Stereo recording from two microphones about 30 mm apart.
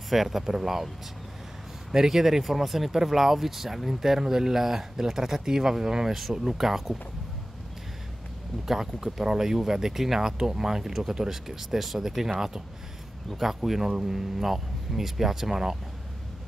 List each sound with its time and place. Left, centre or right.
0.1 s speech: centre
1.9 s speech: centre
6.6 s speech: centre
8.6 s speech: centre
10.9 s speech: centre